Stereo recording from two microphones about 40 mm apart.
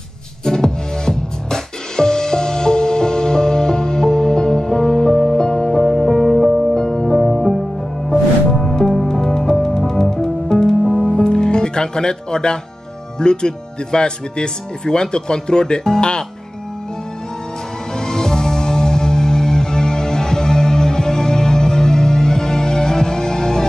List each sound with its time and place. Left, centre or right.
0.5 s music: centre
6.7 s music: centre
9.3 s music: centre
13.2 s speech: left
17.9 s music: centre